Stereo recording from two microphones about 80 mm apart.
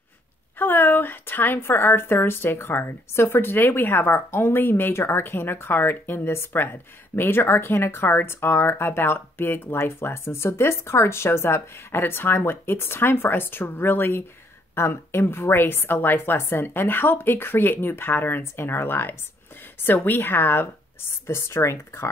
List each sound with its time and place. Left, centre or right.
0.6 s a woman's voice: left